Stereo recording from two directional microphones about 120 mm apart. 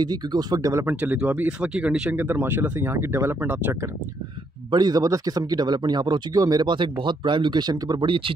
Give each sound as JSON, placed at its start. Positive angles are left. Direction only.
{"t": 0.0, "sound": "speech", "side_deg": -35}
{"t": 0.8, "sound": "speech", "side_deg": -15}
{"t": 4.6, "sound": "speech", "side_deg": -35}